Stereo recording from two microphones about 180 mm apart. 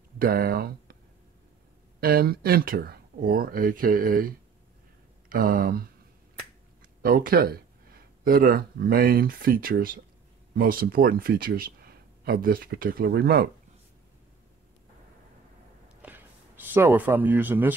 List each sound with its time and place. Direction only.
0.2 s speech: 55° right (ahead or behind)
2.0 s speech: 55° right (ahead or behind)
7.0 s speech: 55° right (ahead or behind)
16.0 s speech: 10° right (ahead or behind)